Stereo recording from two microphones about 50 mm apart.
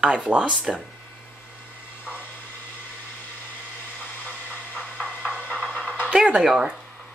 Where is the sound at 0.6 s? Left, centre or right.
Centre.